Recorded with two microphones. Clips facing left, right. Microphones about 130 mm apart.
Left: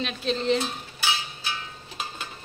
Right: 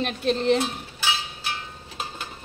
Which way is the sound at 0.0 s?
55° right (ahead or behind).